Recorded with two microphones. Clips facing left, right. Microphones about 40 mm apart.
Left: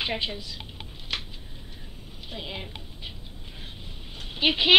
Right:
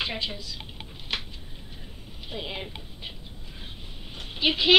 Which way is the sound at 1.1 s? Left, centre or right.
Centre.